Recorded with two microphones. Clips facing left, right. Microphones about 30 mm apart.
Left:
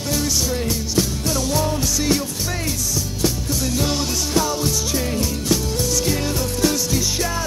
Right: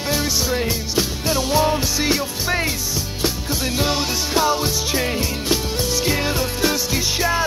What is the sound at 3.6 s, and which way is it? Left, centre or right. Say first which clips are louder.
Music: right 2 dB; right.